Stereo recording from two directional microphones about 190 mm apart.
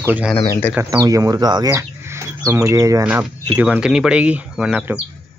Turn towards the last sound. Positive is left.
turn(degrees=-5)  # may be behind; listen again after turning